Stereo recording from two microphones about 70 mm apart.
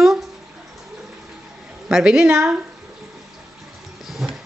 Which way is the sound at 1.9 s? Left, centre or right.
Centre.